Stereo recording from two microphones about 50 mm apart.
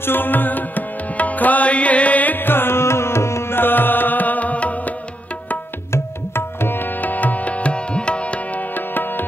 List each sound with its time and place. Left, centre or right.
0.0 s music: left
3.5 s music: left
5.9 s tabla: left
8.7 s tabla: left